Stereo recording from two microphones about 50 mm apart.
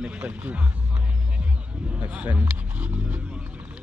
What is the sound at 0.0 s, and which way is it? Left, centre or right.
Speech, right.